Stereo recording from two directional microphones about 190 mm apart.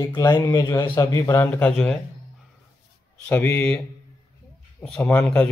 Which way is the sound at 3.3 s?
10° left (ahead or behind).